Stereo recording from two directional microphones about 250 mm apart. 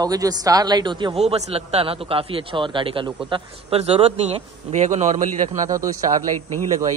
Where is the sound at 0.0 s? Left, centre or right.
Centre; by 5.7 s right.